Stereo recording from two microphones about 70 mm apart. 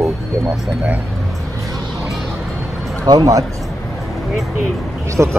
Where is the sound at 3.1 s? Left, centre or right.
Right.